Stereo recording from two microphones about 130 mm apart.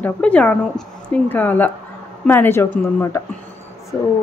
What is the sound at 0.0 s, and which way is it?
A woman's voice, 10° left (ahead or behind).